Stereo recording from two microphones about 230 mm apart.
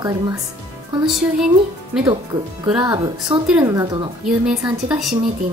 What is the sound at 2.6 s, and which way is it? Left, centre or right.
Speech, centre.